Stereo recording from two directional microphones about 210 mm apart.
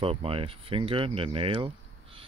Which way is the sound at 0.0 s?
25° right (ahead or behind).